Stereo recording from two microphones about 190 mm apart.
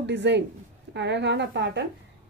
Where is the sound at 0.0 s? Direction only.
65° right (ahead or behind).